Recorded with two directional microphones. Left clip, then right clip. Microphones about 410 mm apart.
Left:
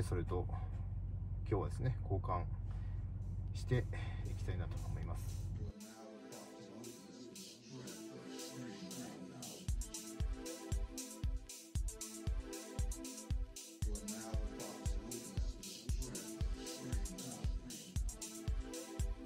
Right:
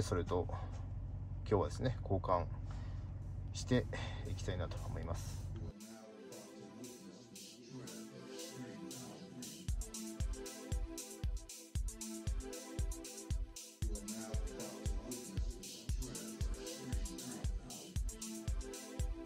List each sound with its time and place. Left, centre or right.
0.0 s a sound: right
1.5 s speech: right
3.5 s speech: right
7.8 s music: centre